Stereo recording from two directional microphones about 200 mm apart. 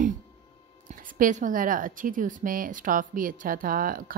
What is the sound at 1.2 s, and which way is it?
A woman's voice, 40° right (ahead or behind).